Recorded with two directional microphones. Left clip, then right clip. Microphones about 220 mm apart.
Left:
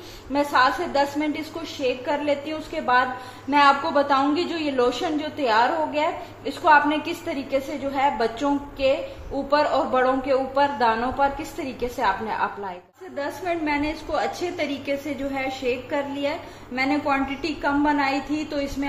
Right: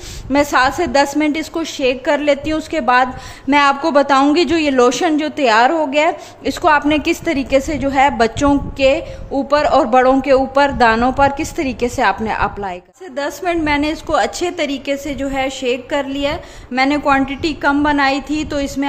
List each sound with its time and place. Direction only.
0.3 s a woman's voice: 50° right (ahead or behind)